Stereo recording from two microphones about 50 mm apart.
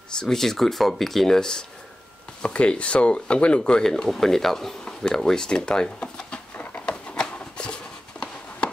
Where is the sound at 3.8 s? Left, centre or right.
Centre.